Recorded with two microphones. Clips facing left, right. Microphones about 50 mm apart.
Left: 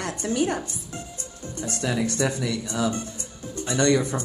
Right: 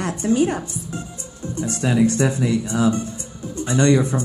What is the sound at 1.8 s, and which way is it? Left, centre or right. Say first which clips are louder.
A woman's voice: right 7 dB; right.